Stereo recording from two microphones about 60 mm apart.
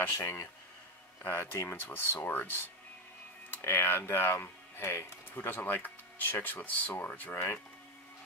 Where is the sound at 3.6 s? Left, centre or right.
Left.